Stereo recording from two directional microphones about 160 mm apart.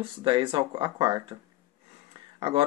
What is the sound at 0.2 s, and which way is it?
Speech, 30° right (ahead or behind).